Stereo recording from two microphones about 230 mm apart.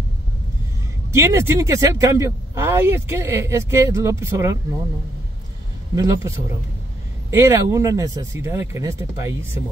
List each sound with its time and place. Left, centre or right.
1.1 s speech: centre
5.9 s speech: centre